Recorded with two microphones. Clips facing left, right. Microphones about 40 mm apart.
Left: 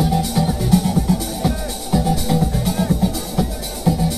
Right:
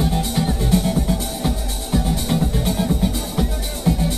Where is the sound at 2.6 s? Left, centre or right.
Centre.